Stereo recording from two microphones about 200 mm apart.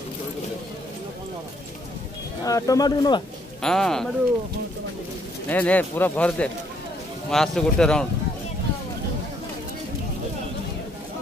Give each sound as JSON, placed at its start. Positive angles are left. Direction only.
{"t": 2.4, "sound": "speech", "side_deg": 15}
{"t": 3.6, "sound": "speech", "side_deg": 0}
{"t": 5.5, "sound": "speech", "side_deg": 10}